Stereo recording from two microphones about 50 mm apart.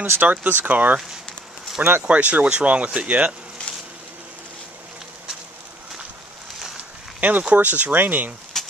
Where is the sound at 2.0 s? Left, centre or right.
Right.